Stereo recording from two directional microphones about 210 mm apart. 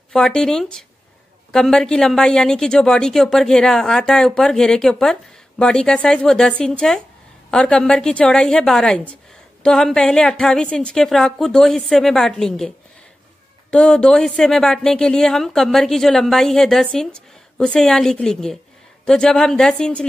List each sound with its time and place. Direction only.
0.1 s a woman's voice: 5° left (ahead or behind)